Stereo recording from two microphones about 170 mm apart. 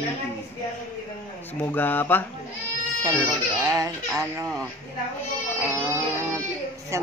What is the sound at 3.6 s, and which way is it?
Speech, 20° right (ahead or behind).